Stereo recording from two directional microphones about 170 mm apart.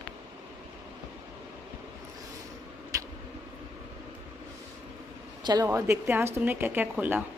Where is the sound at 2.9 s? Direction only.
20° right (ahead or behind).